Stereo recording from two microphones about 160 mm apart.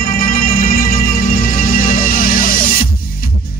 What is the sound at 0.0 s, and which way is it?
Music, 60° left (ahead or behind).